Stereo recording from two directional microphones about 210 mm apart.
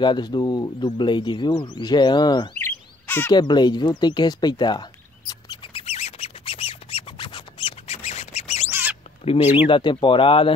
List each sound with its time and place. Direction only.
0.0 s speech: 20° left (ahead or behind)
5.3 s squawk: 20° left (ahead or behind)
8.6 s a sound: 10° right (ahead or behind)
9.2 s speech: 30° left (ahead or behind)